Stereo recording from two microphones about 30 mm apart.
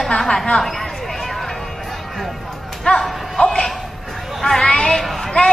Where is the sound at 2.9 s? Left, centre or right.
Left.